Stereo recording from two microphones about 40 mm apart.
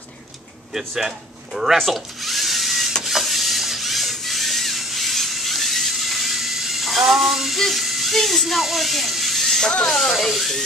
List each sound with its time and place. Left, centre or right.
0.7 s speech: centre
1.9 s drill: centre
3.0 s a sound: centre
9.8 s speech: centre
10.2 s speech: centre